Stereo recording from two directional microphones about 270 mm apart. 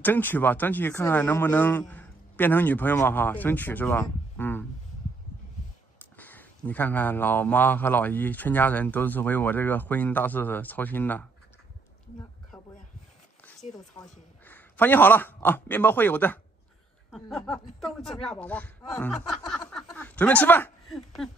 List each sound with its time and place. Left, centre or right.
0.0 s a man's voice: centre
6.1 s a man's voice: centre
13.6 s speech: left
13.9 s a man's voice: centre
19.7 s a sound: centre